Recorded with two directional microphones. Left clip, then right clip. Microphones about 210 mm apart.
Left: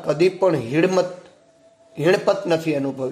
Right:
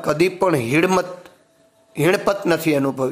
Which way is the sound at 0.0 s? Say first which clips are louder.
Even; 20° right (ahead or behind).